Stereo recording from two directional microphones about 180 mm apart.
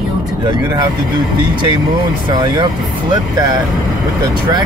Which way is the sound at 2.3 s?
25° right (ahead or behind).